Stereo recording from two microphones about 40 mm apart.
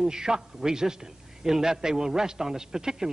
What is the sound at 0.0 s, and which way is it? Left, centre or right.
A man's voice, centre.